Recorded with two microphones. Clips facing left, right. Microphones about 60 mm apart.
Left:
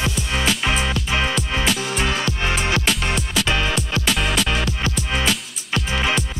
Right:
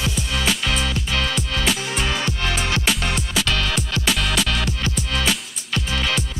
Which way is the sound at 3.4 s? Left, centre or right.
Left.